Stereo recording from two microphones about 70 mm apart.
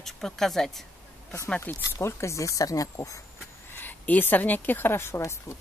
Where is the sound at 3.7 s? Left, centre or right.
Left.